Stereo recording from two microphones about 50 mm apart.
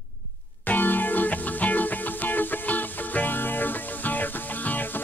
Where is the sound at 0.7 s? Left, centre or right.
Left.